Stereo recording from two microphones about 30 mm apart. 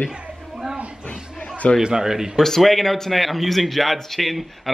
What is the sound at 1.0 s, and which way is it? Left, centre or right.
Chatter, left.